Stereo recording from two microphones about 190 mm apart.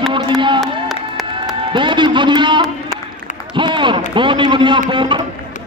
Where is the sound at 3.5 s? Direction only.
25° right (ahead or behind).